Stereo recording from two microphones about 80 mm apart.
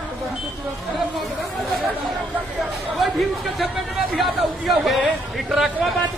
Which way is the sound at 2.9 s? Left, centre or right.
Centre.